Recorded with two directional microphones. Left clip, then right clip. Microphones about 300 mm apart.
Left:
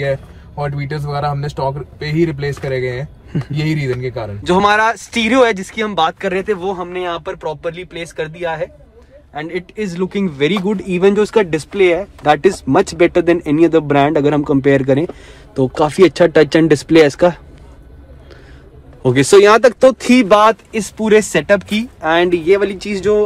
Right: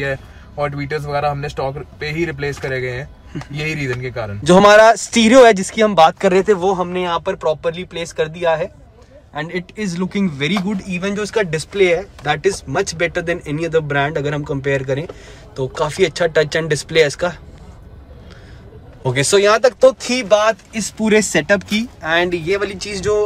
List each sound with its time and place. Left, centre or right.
0.7 s speech: centre
3.3 s speech: centre
4.1 s speech: centre
19.0 s speech: centre